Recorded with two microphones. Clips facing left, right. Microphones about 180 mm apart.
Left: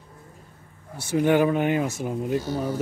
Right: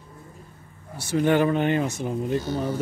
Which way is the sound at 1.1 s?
10° left (ahead or behind).